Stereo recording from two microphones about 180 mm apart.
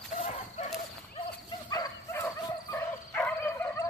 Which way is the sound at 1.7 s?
20° left (ahead or behind).